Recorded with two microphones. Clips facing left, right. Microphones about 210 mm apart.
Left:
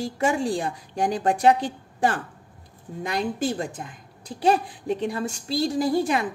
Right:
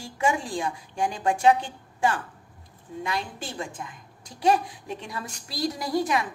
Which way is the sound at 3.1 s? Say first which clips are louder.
Left 9 dB; 40° left (ahead or behind).